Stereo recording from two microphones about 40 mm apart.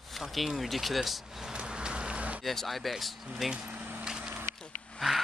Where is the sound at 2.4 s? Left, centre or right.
Centre.